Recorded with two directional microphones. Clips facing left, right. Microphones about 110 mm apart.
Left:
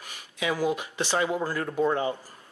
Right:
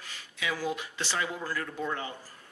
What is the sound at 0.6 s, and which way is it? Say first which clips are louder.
Speech: left 6 dB; 20° left (ahead or behind).